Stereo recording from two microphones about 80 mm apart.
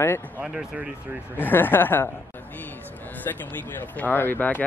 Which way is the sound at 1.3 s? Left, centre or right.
Left.